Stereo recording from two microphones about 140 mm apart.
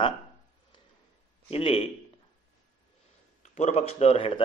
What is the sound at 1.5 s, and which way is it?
Speech, 45° left (ahead or behind).